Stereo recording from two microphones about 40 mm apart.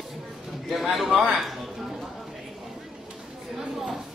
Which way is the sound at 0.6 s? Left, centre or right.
Centre.